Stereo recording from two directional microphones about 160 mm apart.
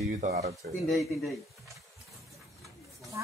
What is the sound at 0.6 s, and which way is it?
Speech, 65° right (ahead or behind).